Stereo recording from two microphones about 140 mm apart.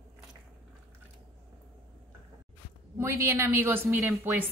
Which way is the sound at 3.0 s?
20° right (ahead or behind).